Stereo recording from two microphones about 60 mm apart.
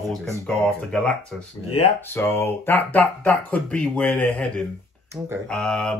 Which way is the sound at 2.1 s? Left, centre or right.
Left.